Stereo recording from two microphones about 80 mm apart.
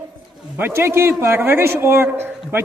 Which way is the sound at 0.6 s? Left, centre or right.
Right.